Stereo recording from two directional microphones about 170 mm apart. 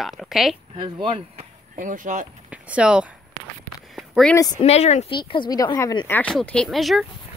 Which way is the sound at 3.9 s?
Centre (ahead or behind).